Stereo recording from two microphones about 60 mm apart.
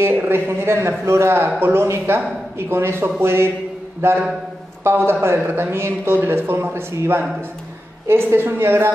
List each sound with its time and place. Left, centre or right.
0.2 s a man's voice: right
4.8 s a man's voice: right